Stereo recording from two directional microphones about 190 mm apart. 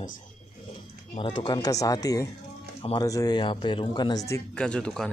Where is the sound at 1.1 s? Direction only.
25° left (ahead or behind).